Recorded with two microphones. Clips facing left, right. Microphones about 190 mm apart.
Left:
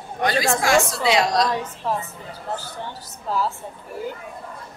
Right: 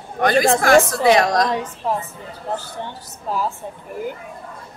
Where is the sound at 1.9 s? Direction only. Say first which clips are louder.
Right 2 dB; 15° right (ahead or behind).